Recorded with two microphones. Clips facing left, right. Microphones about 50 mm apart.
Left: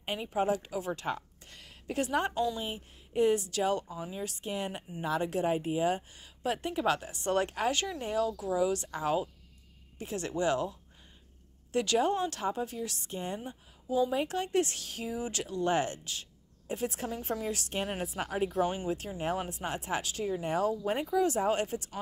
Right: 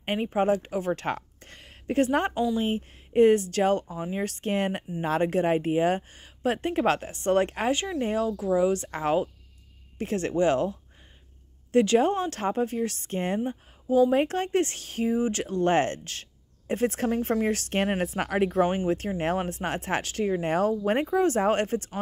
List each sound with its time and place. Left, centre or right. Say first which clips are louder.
0.0 s a woman's voice: right 6 dB; right
1.5 s a sound: right 8 dB; right
2.3 s a woman's voice: right 5 dB; right
2.6 s speech: right 10 dB; right
4.2 s speech: right 9 dB; right
13.4 s speech: right 12 dB; right